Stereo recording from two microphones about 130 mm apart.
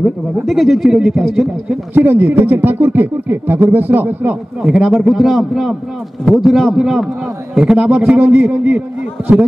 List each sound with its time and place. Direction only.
0.0 s speech: centre (ahead or behind)
2.0 s speech: 15° right (ahead or behind)